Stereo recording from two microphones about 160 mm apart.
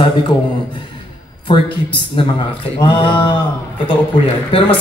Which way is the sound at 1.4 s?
30° left (ahead or behind).